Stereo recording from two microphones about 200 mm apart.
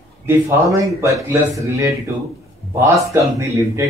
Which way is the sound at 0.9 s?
15° right (ahead or behind).